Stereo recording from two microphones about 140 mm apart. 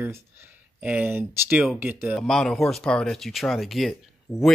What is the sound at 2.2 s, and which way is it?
Speech, 5° left (ahead or behind).